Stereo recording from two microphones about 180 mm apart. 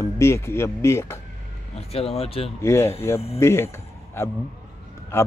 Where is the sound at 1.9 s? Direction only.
35° left (ahead or behind).